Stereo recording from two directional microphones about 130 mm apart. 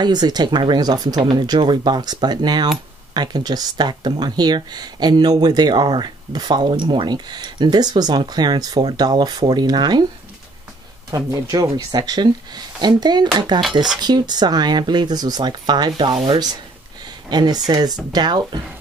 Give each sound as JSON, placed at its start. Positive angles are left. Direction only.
{"t": 0.0, "sound": "speech", "side_deg": -35}
{"t": 11.1, "sound": "speech", "side_deg": -30}
{"t": 17.3, "sound": "speech", "side_deg": -35}